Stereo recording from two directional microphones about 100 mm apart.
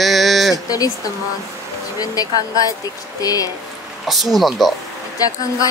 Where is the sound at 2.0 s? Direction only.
35° left (ahead or behind).